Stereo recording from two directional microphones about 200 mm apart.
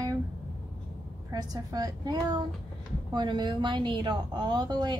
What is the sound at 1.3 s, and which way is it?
A woman's voice, 20° right (ahead or behind).